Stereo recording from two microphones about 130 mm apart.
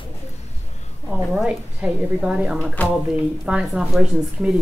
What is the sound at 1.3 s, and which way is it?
A woman's voice, 5° right (ahead or behind).